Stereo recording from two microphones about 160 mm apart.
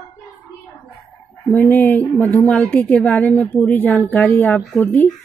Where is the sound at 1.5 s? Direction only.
10° left (ahead or behind).